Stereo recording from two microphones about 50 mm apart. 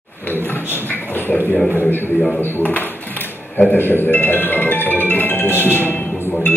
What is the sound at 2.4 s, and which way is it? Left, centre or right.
A man's voice, left.